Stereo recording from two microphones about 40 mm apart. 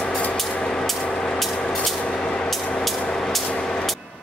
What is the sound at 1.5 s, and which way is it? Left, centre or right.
Vehicle, left.